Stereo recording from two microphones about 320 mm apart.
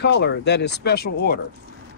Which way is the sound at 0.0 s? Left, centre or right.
Left.